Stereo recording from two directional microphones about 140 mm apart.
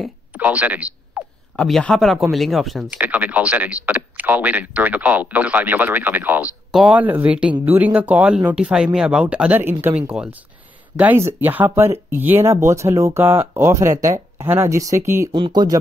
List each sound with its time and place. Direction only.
0.3 s a sound: 10° right (ahead or behind)
1.6 s speech: 5° left (ahead or behind)
3.0 s speech: 10° right (ahead or behind)
15.3 s speech: 30° right (ahead or behind)